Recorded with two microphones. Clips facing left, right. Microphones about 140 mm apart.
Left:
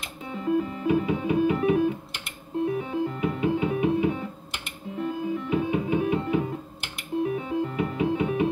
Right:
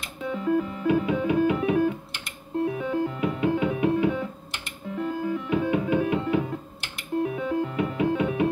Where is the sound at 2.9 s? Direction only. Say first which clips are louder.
Right 1 dB; 55° right (ahead or behind).